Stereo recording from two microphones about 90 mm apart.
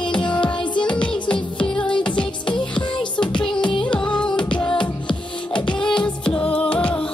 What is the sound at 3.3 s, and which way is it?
Music, 60° left (ahead or behind).